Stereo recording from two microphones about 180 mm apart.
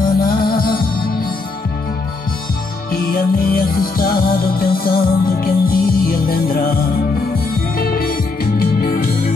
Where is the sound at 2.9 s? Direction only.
55° left (ahead or behind).